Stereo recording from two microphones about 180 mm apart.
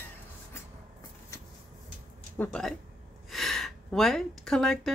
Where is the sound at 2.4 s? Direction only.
5° left (ahead or behind).